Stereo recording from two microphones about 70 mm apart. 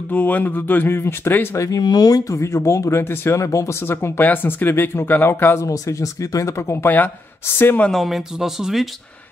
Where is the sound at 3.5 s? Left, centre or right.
Left.